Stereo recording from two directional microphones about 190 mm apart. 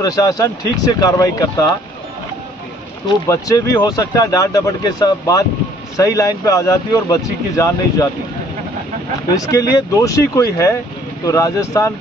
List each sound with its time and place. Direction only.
0.0 s speech: 20° left (ahead or behind)
3.1 s speech: 20° left (ahead or behind)
9.5 s speech: 20° left (ahead or behind)